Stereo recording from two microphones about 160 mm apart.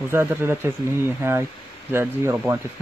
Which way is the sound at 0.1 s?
15° right (ahead or behind).